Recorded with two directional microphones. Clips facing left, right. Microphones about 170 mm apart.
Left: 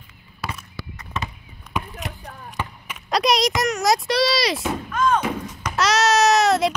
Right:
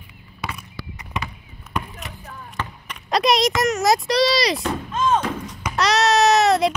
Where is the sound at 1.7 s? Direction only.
Centre (ahead or behind).